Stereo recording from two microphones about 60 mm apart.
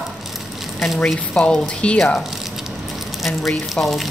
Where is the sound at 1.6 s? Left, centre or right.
Centre.